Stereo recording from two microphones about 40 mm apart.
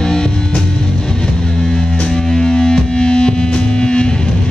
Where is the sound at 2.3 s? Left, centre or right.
Centre.